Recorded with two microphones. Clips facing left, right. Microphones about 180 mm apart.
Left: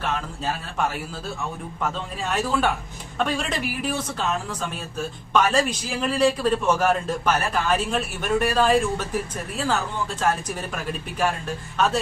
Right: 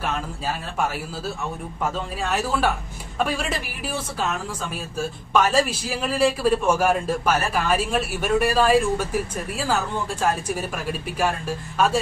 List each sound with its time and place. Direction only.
2.3 s a woman's voice: 5° right (ahead or behind)
10.5 s a man's voice: 10° right (ahead or behind)